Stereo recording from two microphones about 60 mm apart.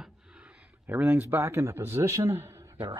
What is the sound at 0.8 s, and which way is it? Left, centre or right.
Speech, right.